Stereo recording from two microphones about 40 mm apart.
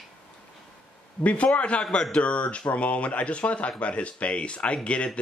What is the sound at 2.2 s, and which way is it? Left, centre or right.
Speech, left.